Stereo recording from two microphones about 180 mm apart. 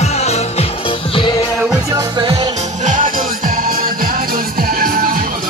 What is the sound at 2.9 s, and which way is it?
Music, 45° right (ahead or behind).